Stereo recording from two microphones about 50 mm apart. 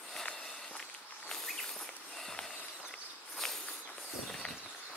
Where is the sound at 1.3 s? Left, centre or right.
Centre.